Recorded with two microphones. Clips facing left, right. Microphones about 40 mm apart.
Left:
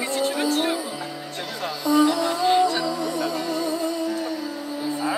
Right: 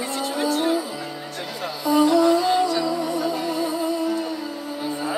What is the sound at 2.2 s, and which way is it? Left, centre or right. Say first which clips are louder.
Music: right 1 dB; left.